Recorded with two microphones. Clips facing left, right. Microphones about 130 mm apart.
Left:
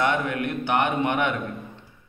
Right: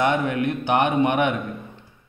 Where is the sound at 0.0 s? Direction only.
20° right (ahead or behind).